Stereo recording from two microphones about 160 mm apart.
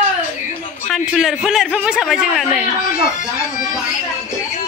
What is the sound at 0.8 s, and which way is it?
A man's voice, centre (ahead or behind).